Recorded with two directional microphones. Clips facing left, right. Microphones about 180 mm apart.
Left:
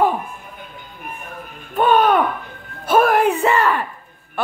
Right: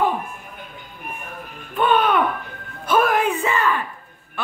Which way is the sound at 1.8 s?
45° left (ahead or behind).